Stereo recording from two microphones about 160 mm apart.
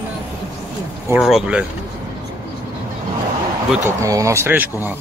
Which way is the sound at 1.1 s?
5° right (ahead or behind).